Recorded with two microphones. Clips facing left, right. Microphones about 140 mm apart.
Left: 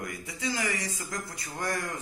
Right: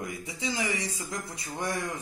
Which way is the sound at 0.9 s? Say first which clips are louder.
Right 1 dB; 25° right (ahead or behind).